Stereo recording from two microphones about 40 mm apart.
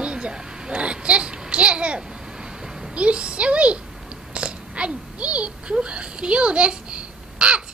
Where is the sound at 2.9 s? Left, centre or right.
Right.